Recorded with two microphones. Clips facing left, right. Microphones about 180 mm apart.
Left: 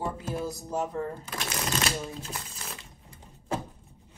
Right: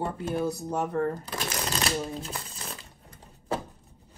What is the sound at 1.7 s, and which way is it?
Shuffling cards, 30° right (ahead or behind).